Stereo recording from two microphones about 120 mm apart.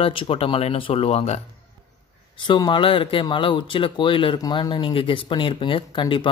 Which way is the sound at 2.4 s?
40° left (ahead or behind).